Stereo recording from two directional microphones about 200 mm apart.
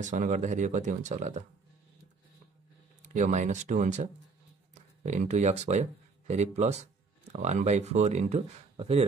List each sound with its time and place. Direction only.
0.0 s speech: 40° right (ahead or behind)
3.0 s speech: 35° right (ahead or behind)